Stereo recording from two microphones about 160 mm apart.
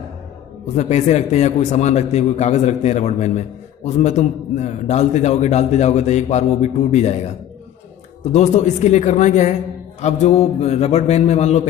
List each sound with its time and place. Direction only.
0.7 s a man's voice: 45° left (ahead or behind)